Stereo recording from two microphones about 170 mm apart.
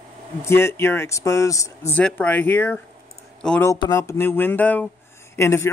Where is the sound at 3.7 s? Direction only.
20° left (ahead or behind).